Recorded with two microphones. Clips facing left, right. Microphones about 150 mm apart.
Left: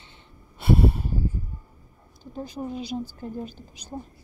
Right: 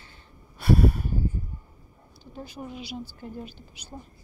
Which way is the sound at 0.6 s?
25° left (ahead or behind).